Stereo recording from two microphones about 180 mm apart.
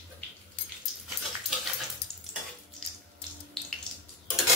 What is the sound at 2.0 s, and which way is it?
Stir, 65° left (ahead or behind).